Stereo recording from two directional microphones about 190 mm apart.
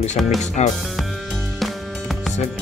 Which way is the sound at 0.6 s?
35° left (ahead or behind).